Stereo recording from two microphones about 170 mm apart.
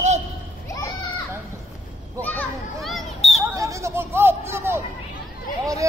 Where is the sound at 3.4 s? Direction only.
20° right (ahead or behind).